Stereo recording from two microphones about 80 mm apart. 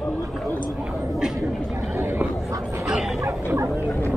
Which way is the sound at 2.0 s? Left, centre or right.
Right.